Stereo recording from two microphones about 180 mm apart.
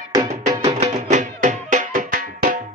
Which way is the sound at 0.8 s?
45° right (ahead or behind).